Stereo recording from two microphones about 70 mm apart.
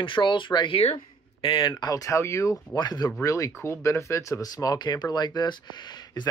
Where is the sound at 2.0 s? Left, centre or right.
Left.